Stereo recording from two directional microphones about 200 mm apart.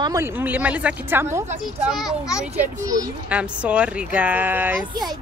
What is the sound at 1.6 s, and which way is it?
Speech, centre (ahead or behind).